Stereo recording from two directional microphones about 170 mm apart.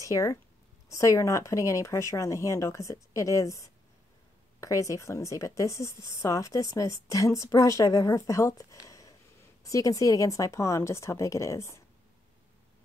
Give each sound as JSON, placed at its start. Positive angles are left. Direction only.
{"t": 0.0, "sound": "a woman's voice", "side_deg": 20}
{"t": 8.8, "sound": "a sound", "side_deg": 20}
{"t": 9.6, "sound": "speech", "side_deg": 20}